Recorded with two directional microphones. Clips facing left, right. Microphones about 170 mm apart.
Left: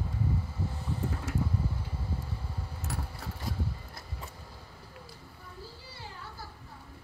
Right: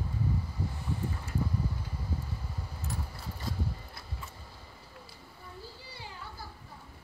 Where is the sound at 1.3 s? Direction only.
90° left.